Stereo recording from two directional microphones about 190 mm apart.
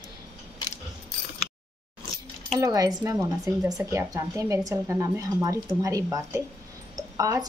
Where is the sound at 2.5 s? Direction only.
20° right (ahead or behind).